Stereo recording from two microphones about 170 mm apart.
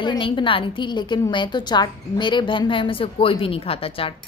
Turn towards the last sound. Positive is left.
turn(degrees=35)  # may be behind; listen again after turning